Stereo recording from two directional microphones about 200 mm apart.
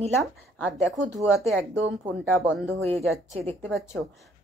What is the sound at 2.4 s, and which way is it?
Speech, centre (ahead or behind).